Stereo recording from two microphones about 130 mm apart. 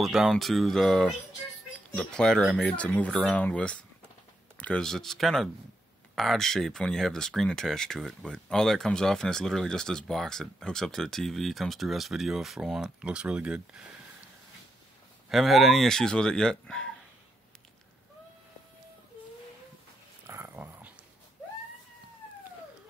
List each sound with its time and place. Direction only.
0.0 s speech: centre (ahead or behind)
15.2 s speech: centre (ahead or behind)
20.2 s dog: 20° right (ahead or behind)